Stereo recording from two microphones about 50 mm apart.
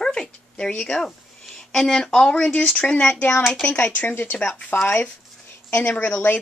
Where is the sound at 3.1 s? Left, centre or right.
Left.